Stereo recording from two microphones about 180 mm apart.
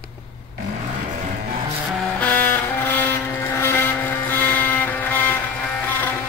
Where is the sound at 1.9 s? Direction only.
10° left (ahead or behind).